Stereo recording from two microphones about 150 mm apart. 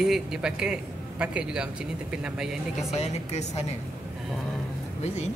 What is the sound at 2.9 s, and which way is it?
Speech, 45° left (ahead or behind).